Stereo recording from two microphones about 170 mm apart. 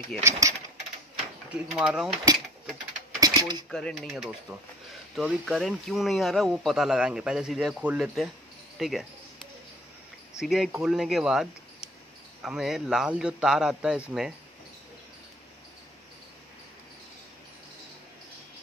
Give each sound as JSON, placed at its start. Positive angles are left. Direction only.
{"t": 0.2, "sound": "speech", "side_deg": -20}
{"t": 1.5, "sound": "speech", "side_deg": -5}
{"t": 3.2, "sound": "mechanisms", "side_deg": -25}
{"t": 3.7, "sound": "a man's voice", "side_deg": 5}
{"t": 10.4, "sound": "a man's voice", "side_deg": 0}